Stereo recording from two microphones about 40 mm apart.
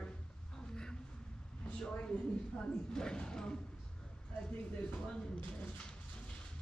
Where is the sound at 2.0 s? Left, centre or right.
Left.